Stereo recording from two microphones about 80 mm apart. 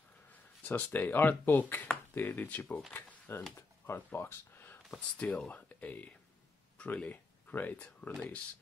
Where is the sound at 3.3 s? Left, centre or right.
Left.